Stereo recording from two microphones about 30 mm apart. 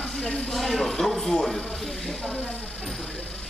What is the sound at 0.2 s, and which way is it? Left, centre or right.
Speech, left.